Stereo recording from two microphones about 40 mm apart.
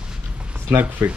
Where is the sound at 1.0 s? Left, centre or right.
Right.